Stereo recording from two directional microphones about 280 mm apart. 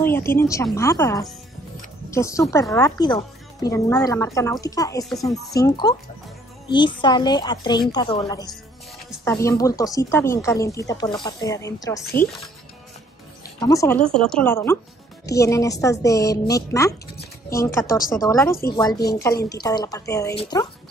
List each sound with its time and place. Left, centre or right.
0.0 s speech: centre
13.6 s speech: centre
18.9 s a woman's voice: left
19.2 s speech: centre